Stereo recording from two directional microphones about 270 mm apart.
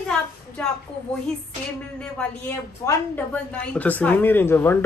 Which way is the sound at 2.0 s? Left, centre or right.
Centre.